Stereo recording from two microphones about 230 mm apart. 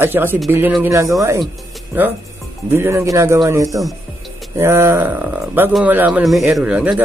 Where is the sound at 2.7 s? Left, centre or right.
Centre.